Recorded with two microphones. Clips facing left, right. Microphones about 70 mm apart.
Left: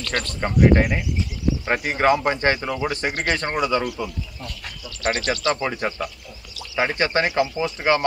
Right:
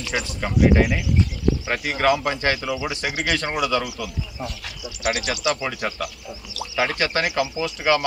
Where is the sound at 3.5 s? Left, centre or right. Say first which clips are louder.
Left 1 dB; left.